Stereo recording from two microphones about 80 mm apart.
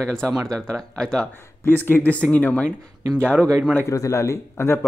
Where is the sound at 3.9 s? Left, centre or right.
Left.